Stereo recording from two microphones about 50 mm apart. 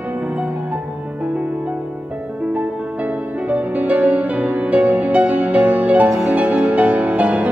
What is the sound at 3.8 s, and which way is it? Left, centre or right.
Music, right.